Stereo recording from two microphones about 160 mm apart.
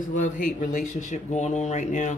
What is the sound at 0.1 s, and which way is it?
Speech, 55° left (ahead or behind).